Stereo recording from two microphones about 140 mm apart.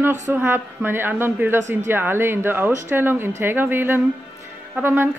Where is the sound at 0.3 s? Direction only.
15° right (ahead or behind).